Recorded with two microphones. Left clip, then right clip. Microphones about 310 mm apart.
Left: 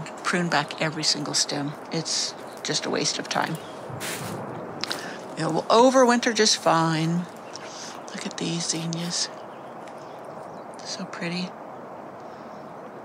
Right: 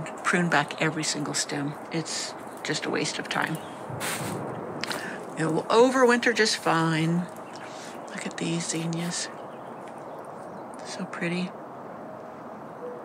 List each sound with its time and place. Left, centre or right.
0.2 s speech: centre
4.0 s a sound: centre
4.7 s speech: centre
8.2 s speech: centre
10.9 s speech: centre